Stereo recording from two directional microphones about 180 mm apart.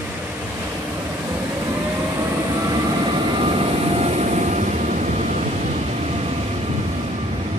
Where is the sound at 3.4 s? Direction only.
35° right (ahead or behind).